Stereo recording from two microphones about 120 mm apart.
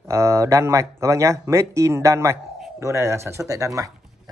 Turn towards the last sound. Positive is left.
turn(degrees=-30)  # may be behind; listen again after turning